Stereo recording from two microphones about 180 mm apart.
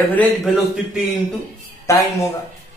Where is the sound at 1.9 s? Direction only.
15° left (ahead or behind).